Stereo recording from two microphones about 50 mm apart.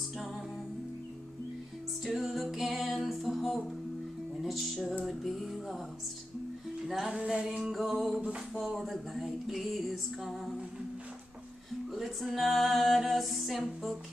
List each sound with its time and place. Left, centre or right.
2.0 s music: centre
7.1 s music: centre
7.5 s music: centre
11.9 s music: centre